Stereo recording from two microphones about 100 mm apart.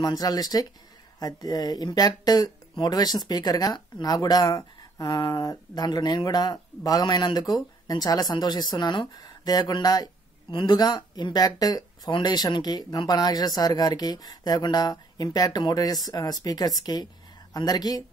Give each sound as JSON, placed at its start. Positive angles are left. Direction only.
{"t": 0.0, "sound": "speech", "side_deg": 40}